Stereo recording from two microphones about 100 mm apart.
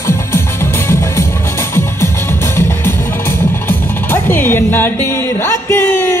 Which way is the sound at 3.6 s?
20° left (ahead or behind).